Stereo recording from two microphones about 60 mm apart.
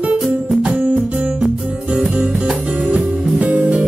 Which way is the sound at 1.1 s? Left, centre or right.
Right.